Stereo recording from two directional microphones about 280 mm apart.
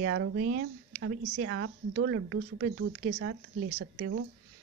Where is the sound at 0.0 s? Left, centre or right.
Right.